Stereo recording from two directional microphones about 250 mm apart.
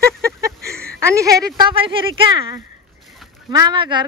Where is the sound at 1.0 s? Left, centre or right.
Centre.